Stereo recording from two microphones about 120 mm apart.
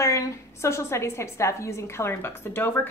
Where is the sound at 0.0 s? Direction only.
25° left (ahead or behind).